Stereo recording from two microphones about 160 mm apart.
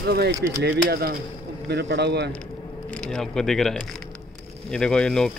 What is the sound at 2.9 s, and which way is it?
Speech, 5° left (ahead or behind).